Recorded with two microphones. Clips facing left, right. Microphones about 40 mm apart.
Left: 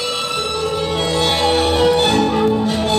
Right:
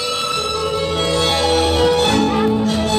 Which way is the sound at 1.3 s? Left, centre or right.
Centre.